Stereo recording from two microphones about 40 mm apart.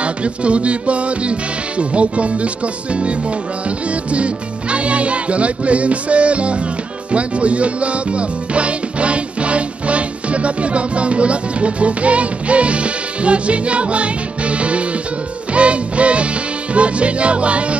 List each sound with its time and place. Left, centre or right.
0.0 s music: right